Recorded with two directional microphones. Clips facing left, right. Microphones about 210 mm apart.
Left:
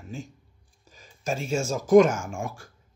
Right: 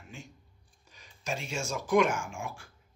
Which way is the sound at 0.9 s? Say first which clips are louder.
Left 6 dB; 45° left (ahead or behind).